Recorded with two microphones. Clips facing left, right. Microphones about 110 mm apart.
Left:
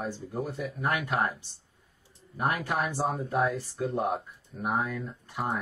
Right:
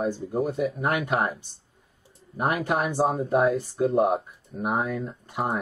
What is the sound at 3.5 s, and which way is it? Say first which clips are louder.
Speech: right 8 dB; 30° right (ahead or behind).